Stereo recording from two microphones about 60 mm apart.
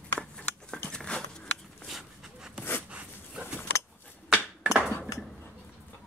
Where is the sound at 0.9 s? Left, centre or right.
Centre.